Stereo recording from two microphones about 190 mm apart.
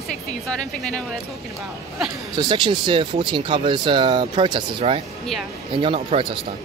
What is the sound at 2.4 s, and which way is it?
Speech, 25° right (ahead or behind).